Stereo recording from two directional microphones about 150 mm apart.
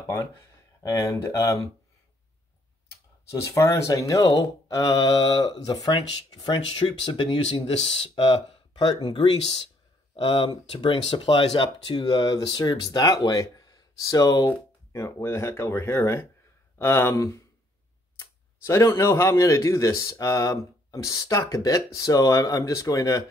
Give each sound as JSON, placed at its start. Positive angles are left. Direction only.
{"t": 0.8, "sound": "speech", "side_deg": 20}
{"t": 2.9, "sound": "speech", "side_deg": 20}
{"t": 7.4, "sound": "speech", "side_deg": 45}